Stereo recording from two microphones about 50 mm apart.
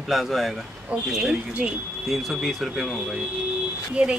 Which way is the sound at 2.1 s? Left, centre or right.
Centre.